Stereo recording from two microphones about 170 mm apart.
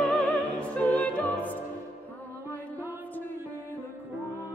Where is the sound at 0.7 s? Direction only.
10° left (ahead or behind).